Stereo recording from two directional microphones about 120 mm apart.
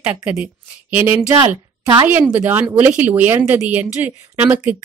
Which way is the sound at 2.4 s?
20° right (ahead or behind).